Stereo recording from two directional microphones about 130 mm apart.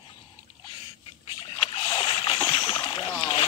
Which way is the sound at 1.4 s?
45° left (ahead or behind).